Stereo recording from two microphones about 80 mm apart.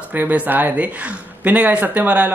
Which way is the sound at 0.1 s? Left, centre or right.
Centre.